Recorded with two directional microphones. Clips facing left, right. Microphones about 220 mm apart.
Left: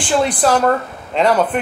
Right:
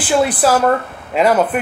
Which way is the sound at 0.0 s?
5° right (ahead or behind).